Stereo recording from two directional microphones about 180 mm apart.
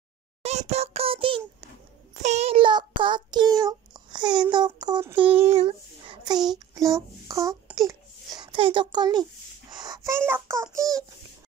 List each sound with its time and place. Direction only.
0.4 s a sound: 35° right (ahead or behind)
2.1 s child singing: 40° right (ahead or behind); by 5.2 s 25° right (ahead or behind)
5.3 s child singing: 35° right (ahead or behind)
7.2 s a child's voice: 20° right (ahead or behind)